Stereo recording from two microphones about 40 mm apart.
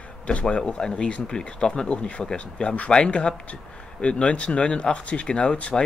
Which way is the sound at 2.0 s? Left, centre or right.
Left.